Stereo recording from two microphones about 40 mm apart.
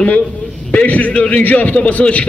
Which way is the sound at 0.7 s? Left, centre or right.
Left.